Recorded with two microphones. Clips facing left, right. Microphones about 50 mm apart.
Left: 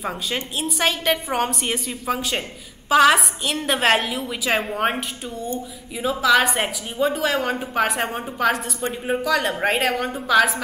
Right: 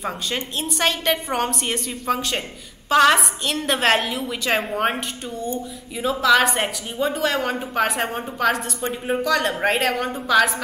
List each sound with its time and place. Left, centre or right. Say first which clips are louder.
0.6 s speech: even; centre